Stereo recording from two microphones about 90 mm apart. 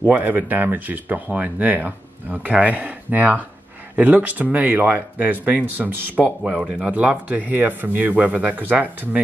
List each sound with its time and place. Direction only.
0.1 s speech: 20° right (ahead or behind)